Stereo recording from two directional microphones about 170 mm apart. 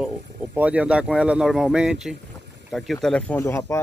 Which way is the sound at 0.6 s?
10° right (ahead or behind).